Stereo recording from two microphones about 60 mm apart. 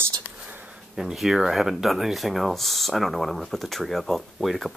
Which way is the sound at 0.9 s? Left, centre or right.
Centre.